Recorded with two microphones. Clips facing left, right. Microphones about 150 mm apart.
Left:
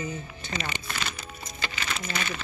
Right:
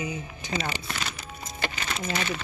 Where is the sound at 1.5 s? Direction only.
55° right (ahead or behind).